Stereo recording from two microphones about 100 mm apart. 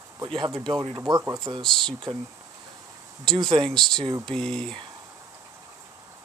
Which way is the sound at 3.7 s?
5° left (ahead or behind).